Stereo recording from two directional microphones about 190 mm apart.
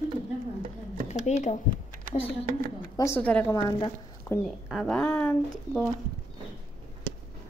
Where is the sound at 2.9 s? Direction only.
10° left (ahead or behind).